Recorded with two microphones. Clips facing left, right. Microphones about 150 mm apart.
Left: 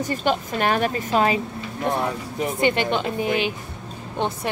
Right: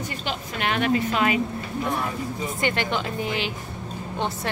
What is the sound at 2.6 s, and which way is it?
Speech, 15° left (ahead or behind).